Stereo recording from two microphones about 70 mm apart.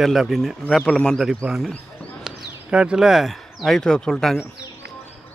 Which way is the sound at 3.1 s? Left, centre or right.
Centre.